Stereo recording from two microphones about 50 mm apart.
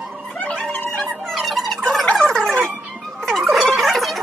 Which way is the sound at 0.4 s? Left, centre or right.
Left.